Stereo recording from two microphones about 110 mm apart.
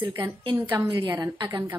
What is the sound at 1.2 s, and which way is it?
Speech, 35° right (ahead or behind).